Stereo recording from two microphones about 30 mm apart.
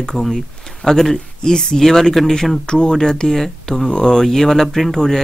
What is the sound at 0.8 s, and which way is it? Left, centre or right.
Speech, centre.